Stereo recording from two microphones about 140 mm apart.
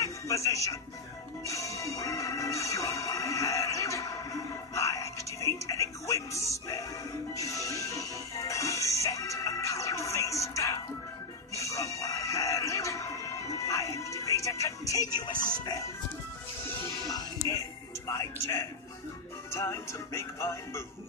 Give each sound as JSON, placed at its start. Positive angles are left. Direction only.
{"t": 0.0, "sound": "speech", "side_deg": 20}
{"t": 1.5, "sound": "music", "side_deg": 20}
{"t": 17.0, "sound": "music", "side_deg": 25}